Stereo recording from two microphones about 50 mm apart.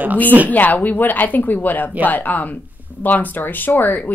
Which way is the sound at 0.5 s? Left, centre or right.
Left.